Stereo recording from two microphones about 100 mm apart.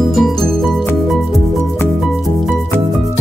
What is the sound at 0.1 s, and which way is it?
Music, 5° left (ahead or behind).